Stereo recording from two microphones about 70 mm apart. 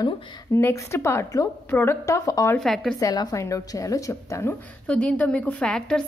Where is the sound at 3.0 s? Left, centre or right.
Left.